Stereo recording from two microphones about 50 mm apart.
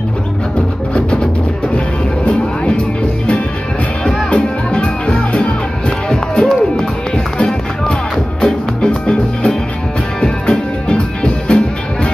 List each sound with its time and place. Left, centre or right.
4.0 s music: left